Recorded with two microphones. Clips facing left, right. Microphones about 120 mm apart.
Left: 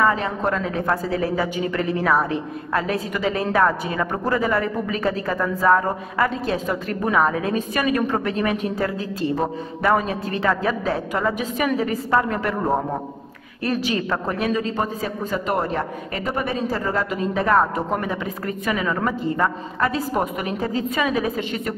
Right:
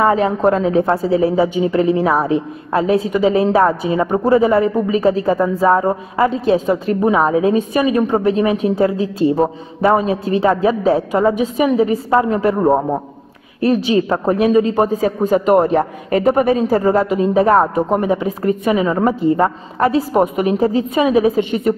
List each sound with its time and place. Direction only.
0.0 s a man's voice: 35° right (ahead or behind)
10.0 s a man's voice: 45° left (ahead or behind)
10.4 s a man's voice: 30° right (ahead or behind)
11.5 s a woman's voice: 20° right (ahead or behind)